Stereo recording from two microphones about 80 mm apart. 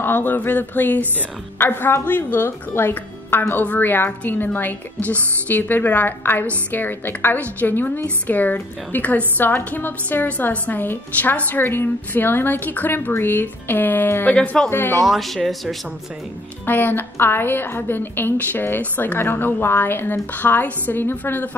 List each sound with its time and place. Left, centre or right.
0.0 s a woman's voice: left
14.3 s speech: centre
14.7 s speech: left
15.0 s speech: centre
16.6 s a woman's voice: left